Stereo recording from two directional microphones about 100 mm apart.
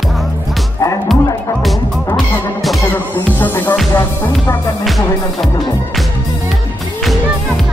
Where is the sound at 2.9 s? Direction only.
20° left (ahead or behind).